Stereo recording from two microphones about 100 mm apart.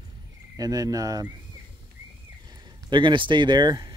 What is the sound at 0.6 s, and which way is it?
Speech, 40° right (ahead or behind).